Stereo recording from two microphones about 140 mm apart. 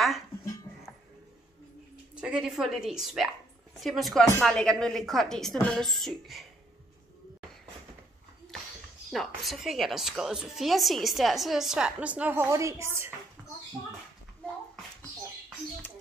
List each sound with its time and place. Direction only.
2.1 s a woman's voice: 5° right (ahead or behind)
9.1 s a woman's voice: centre (ahead or behind); by 13.1 s 20° right (ahead or behind)